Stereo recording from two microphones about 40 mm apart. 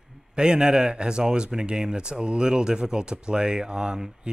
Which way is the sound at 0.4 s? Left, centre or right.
Centre.